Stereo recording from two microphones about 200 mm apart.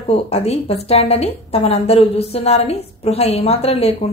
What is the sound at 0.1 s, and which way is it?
A woman's voice, 30° left (ahead or behind).